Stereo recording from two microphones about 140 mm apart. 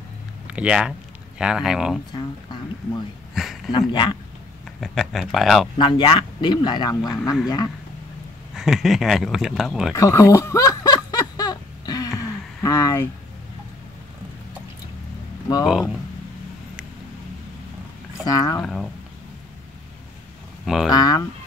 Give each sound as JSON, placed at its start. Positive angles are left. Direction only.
{"t": 0.5, "sound": "speech", "side_deg": -5}
{"t": 3.3, "sound": "speech", "side_deg": 0}
{"t": 3.7, "sound": "speech", "side_deg": 35}
{"t": 4.7, "sound": "speech", "side_deg": 0}
{"t": 5.8, "sound": "speech", "side_deg": 35}
{"t": 8.5, "sound": "speech", "side_deg": -5}
{"t": 9.9, "sound": "snicker", "side_deg": 25}
{"t": 15.6, "sound": "speech", "side_deg": 0}
{"t": 18.2, "sound": "speech", "side_deg": 25}
{"t": 18.6, "sound": "speech", "side_deg": 5}
{"t": 20.6, "sound": "speech", "side_deg": 0}
{"t": 20.9, "sound": "speech", "side_deg": 30}